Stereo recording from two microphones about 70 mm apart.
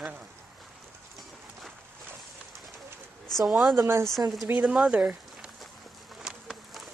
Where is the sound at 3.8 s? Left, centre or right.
Right.